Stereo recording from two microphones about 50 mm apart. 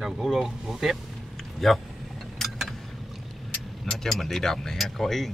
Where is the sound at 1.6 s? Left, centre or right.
Centre.